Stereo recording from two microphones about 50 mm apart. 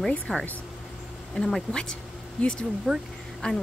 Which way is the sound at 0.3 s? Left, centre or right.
Centre.